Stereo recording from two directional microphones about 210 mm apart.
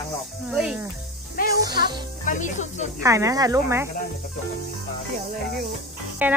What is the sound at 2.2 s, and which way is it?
Speech, 35° left (ahead or behind).